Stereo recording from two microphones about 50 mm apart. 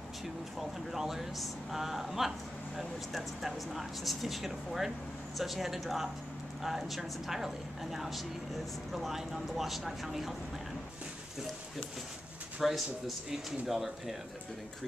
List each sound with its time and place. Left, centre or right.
0.6 s speech: centre
12.6 s speech: centre